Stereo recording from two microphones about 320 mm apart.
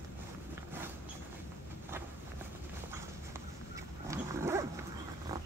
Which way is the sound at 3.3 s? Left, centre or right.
Centre.